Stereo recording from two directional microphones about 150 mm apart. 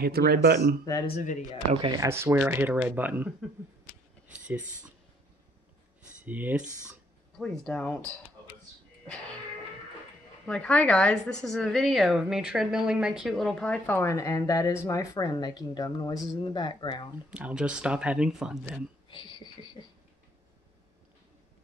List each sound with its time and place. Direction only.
0.0 s speech: 90° right
1.0 s speech: 50° left (ahead or behind)
1.7 s speech: 35° right (ahead or behind)
2.0 s speech: 15° right (ahead or behind)
6.2 s speech: 10° right (ahead or behind)
7.3 s speech: 5° left (ahead or behind)
10.4 s a woman's voice: 5° left (ahead or behind); by 17.1 s 30° left (ahead or behind)
17.3 s speech: 10° right (ahead or behind)
19.0 s speech: 35° left (ahead or behind)